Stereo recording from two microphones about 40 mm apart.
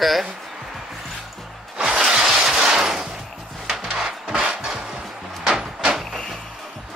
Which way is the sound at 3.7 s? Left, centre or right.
Centre.